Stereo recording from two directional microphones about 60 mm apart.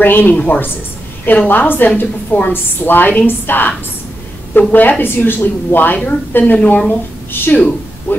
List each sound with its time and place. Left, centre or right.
0.0 s a woman's voice: left
4.7 s a woman's voice: left